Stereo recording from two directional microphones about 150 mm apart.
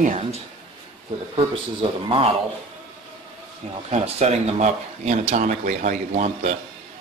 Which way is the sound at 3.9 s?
45° right (ahead or behind).